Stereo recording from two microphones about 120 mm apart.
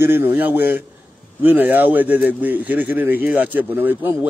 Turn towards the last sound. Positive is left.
turn(degrees=-15)  # may be behind; listen again after turning